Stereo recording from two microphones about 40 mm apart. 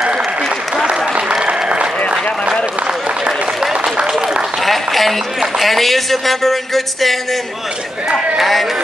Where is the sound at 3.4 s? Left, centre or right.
Centre.